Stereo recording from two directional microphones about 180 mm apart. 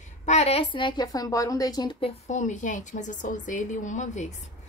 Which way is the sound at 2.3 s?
40° left (ahead or behind).